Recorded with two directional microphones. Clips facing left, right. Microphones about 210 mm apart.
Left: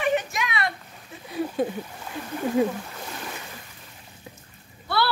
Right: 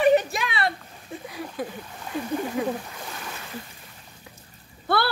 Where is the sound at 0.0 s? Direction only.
35° right (ahead or behind).